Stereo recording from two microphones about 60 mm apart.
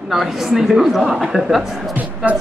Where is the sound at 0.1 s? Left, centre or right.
Centre.